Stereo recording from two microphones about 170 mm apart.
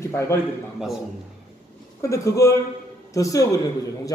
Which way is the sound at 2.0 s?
15° left (ahead or behind).